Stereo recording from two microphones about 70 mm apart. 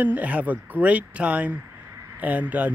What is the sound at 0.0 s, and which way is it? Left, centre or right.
Speech, right.